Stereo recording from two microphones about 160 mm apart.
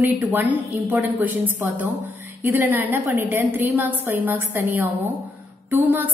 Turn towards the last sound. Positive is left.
turn(degrees=-10)  # may be behind; listen again after turning